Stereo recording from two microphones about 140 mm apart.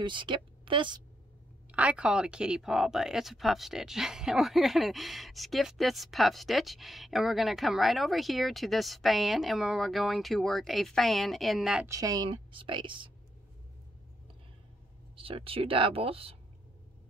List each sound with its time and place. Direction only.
0.0 s a woman's voice: 35° right (ahead or behind)
1.7 s speech: 10° right (ahead or behind)
11.8 s a woman's voice: 25° right (ahead or behind)
15.1 s a woman's voice: 40° right (ahead or behind)